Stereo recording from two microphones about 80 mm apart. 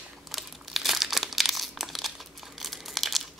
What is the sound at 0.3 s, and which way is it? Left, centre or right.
Crumpling, centre.